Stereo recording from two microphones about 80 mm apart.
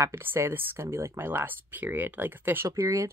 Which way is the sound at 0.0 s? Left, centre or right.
Right.